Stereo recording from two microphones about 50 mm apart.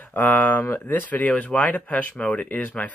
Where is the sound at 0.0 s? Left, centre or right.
Left.